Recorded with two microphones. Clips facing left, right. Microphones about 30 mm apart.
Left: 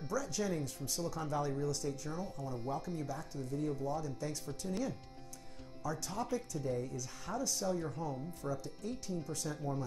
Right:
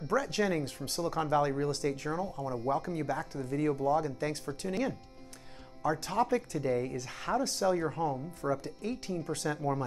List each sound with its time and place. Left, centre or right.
0.1 s speech: right